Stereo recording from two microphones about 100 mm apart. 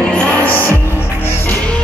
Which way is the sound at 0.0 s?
10° left (ahead or behind).